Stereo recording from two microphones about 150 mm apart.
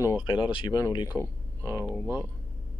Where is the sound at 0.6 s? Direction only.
25° left (ahead or behind).